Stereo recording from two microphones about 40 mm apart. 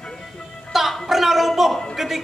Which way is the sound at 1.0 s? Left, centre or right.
Centre.